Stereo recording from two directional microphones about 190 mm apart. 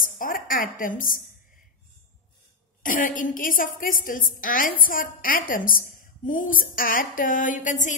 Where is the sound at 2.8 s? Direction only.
45° left (ahead or behind).